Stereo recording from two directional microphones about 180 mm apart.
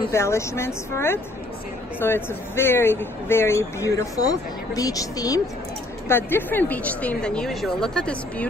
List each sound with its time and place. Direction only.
0.1 s speech: 15° left (ahead or behind)